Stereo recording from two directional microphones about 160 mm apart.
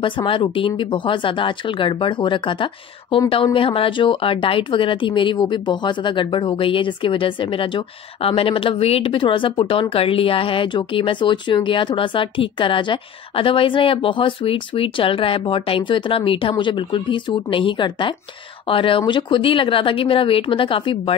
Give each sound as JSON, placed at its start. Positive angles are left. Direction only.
{"t": 0.0, "sound": "speech", "side_deg": 30}